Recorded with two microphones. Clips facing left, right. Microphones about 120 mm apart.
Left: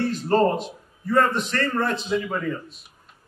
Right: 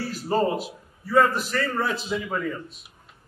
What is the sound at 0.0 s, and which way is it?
A man's voice, 5° right (ahead or behind).